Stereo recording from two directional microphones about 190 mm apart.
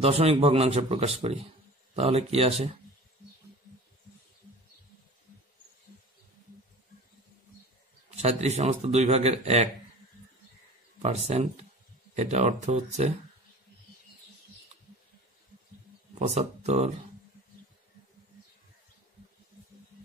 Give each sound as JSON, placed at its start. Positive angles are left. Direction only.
{"t": 0.0, "sound": "speech", "side_deg": -30}
{"t": 8.2, "sound": "speech", "side_deg": -35}
{"t": 11.0, "sound": "speech", "side_deg": -35}
{"t": 16.2, "sound": "speech", "side_deg": -35}